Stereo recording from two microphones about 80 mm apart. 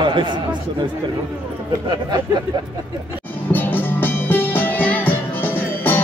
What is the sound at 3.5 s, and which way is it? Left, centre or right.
Music, left.